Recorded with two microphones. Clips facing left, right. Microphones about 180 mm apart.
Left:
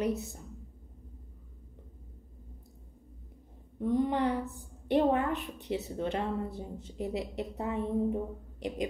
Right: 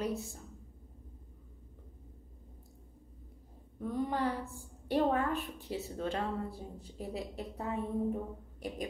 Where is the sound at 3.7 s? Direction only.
20° left (ahead or behind).